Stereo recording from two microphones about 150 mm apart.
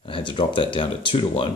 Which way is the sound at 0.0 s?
35° left (ahead or behind).